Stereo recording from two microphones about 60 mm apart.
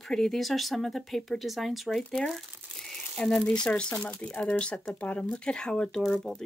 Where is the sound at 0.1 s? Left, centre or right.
Centre.